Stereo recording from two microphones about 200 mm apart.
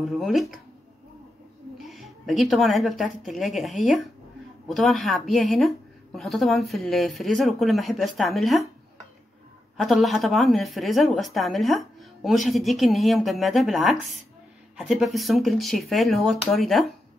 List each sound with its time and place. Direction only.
0.0 s a woman's voice: centre (ahead or behind)
1.8 s a woman's voice: centre (ahead or behind)
9.8 s a woman's voice: centre (ahead or behind)